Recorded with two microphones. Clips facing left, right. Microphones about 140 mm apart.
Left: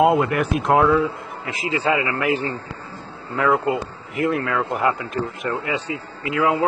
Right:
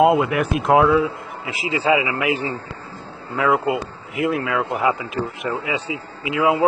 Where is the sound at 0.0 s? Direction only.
Centre (ahead or behind).